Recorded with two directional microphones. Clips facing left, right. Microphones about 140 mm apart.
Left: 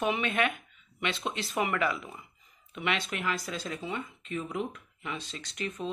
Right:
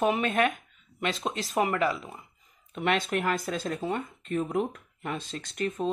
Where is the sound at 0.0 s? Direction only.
40° right (ahead or behind).